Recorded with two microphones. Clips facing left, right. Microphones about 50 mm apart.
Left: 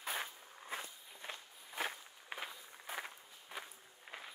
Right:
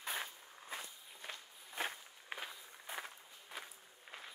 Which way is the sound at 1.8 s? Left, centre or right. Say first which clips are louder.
Left 1 dB; centre.